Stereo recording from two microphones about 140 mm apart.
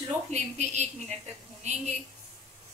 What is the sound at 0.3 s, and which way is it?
Speech, 55° right (ahead or behind).